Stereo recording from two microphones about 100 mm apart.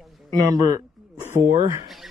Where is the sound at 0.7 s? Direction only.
25° right (ahead or behind).